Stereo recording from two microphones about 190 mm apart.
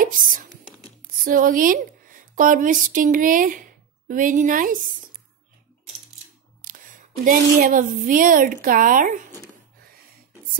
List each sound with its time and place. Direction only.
0.0 s whispering: 45° right (ahead or behind)
1.2 s a woman's voice: 45° right (ahead or behind)
6.6 s speech: 45° right (ahead or behind)